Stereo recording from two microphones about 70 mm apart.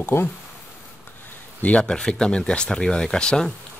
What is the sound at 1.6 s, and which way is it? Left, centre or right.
Speech, centre.